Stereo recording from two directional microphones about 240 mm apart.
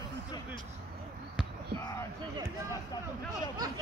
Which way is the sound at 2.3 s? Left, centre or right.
Centre.